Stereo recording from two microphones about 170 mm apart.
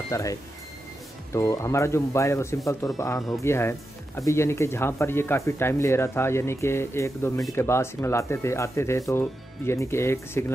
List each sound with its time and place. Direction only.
0.1 s speech: 20° left (ahead or behind)